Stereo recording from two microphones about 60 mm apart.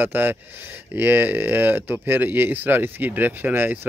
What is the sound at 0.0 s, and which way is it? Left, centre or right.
Speech, right.